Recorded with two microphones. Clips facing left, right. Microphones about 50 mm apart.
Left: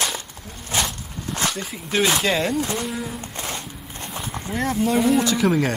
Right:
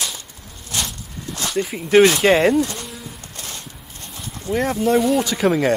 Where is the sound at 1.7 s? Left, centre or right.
Right.